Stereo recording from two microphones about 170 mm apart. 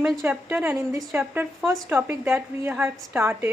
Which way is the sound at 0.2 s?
15° right (ahead or behind).